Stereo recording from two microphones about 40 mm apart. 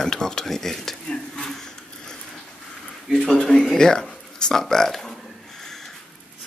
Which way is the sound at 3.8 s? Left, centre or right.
Centre.